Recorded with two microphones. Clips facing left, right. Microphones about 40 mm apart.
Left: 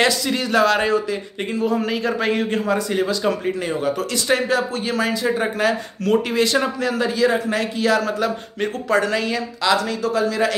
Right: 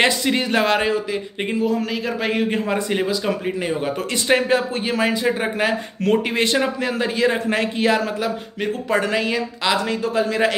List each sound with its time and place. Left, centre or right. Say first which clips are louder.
0.0 s a man's voice: right 1 dB; right
0.7 s speech: left 1 dB; centre
1.6 s a man's voice: left 2 dB; centre
2.5 s a man's voice: left 1 dB; right
3.1 s speech: left 1 dB; centre
4.3 s a man's voice: right 2 dB; right
6.3 s a man's voice: left 1 dB; right